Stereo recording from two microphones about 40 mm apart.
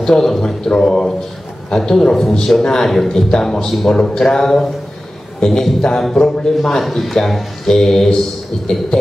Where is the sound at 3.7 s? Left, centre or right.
Centre.